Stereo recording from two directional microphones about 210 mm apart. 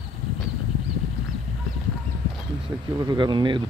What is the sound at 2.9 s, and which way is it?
Speech, 20° right (ahead or behind).